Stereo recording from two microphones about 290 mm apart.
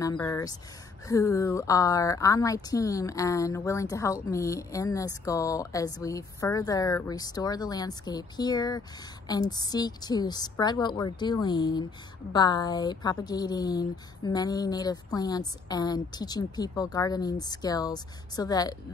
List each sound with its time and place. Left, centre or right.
0.0 s a woman's voice: centre